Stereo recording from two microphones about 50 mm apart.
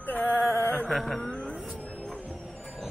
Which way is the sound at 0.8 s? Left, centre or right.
Centre.